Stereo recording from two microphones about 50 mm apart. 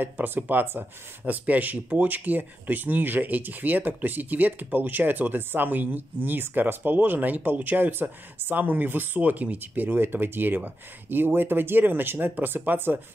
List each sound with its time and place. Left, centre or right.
0.0 s speech: right